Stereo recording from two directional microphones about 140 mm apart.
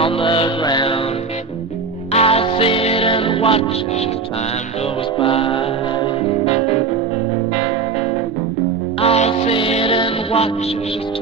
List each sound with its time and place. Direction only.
0.0 s music: 40° left (ahead or behind)
2.1 s music: 45° left (ahead or behind)
5.2 s music: 40° left (ahead or behind)
9.0 s music: 45° left (ahead or behind)